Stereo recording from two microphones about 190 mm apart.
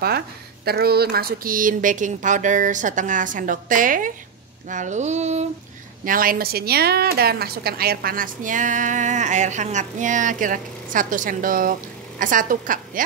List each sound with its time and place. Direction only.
0.7 s a woman's voice: 55° right (ahead or behind)
4.6 s a sound: 40° right (ahead or behind)
6.0 s a woman's voice: 50° right (ahead or behind)